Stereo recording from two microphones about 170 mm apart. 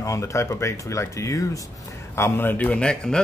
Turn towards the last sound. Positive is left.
turn(degrees=5)  # may be behind; listen again after turning